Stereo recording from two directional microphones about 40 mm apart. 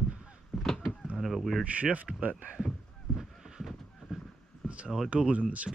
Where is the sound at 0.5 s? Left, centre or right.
Centre.